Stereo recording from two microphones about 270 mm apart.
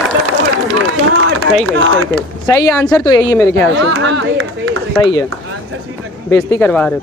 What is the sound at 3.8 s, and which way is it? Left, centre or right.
Speech, right.